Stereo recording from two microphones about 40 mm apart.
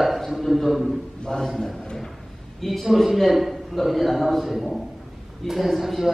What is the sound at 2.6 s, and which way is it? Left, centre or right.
A man's voice, centre.